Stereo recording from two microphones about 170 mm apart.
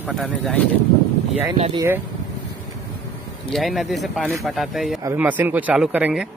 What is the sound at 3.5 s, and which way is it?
Speech, centre (ahead or behind).